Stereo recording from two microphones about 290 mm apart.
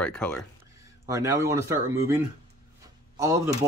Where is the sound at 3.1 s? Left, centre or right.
Centre.